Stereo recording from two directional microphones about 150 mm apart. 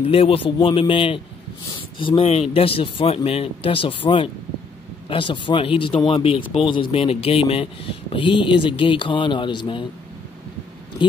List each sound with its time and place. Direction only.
0.1 s speech: 40° left (ahead or behind)
11.0 s speech: 35° left (ahead or behind)